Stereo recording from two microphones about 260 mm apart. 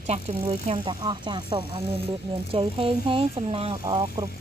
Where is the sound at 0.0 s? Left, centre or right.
Right.